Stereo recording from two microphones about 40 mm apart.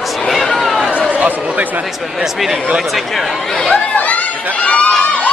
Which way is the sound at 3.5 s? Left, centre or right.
Centre.